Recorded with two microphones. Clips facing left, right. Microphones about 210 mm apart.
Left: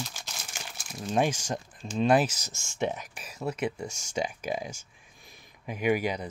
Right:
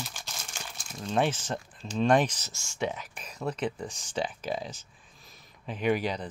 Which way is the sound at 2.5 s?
20° left (ahead or behind).